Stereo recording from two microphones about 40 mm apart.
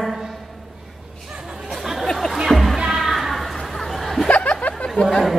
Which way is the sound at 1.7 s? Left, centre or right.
Centre.